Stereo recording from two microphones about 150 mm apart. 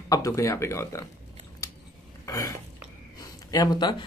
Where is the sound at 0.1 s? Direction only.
20° left (ahead or behind).